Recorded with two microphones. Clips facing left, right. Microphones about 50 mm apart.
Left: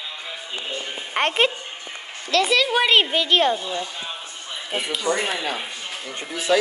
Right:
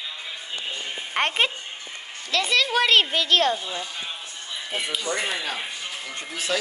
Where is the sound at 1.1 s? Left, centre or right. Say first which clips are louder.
Left 3 dB; centre.